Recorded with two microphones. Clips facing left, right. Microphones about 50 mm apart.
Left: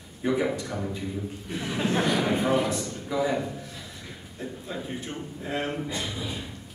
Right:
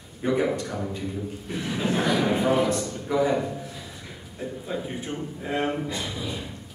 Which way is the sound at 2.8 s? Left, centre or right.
Right.